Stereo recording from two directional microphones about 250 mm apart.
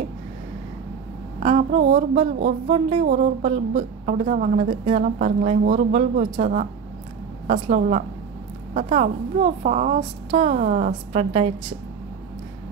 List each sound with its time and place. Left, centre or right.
1.4 s speech: right